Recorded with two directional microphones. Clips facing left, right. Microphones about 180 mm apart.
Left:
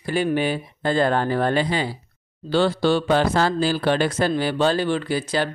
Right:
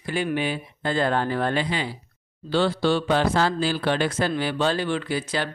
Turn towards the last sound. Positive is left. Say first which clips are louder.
# left 4 dB
turn(degrees=40)  # may be behind; listen again after turning